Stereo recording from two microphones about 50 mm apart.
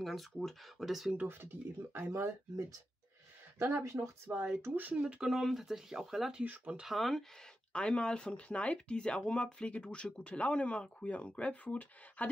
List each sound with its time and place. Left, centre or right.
0.0 s speech: centre
1.2 s speech: right
3.7 s speech: right
4.3 s speech: right
4.7 s speech: right
5.0 s speech: centre
6.4 s speech: right
6.9 s speech: centre
7.7 s speech: centre